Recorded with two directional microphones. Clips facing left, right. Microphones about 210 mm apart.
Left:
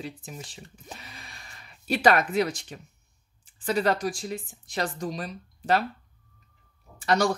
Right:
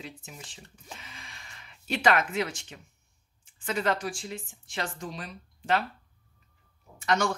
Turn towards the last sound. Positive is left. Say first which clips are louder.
# left 3 dB
turn(degrees=35)  # may be behind; listen again after turning